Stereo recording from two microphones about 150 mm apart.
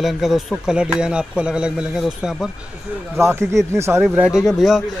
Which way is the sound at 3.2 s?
15° right (ahead or behind).